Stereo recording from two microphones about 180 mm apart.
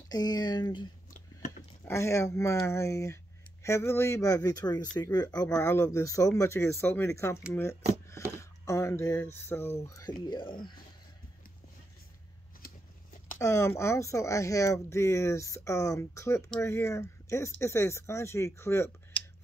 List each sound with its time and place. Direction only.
0.1 s speech: 20° left (ahead or behind)
1.9 s speech: 15° left (ahead or behind)
12.6 s a sound: 45° left (ahead or behind)
13.4 s speech: 15° left (ahead or behind)